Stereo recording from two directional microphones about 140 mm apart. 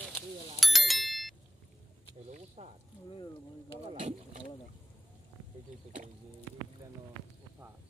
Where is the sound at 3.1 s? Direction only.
40° left (ahead or behind).